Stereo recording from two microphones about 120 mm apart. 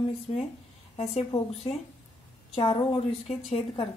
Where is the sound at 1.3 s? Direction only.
60° left (ahead or behind).